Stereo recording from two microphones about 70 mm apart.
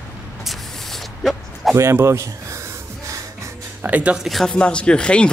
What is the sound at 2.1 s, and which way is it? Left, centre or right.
Speech, right.